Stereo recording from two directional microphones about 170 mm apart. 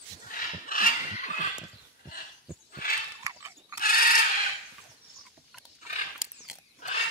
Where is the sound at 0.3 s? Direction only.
55° left (ahead or behind).